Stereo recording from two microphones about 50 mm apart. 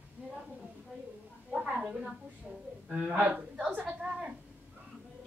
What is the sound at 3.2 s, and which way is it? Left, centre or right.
Speech, right.